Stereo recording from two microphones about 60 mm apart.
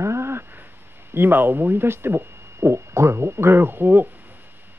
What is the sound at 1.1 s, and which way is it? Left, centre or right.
Speech, right.